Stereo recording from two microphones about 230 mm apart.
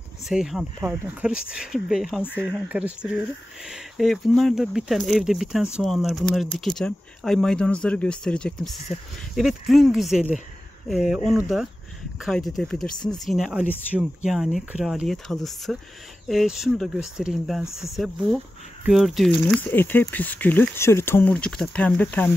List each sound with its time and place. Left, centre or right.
0.3 s speech: centre
12.9 s speech: centre
13.2 s speech: centre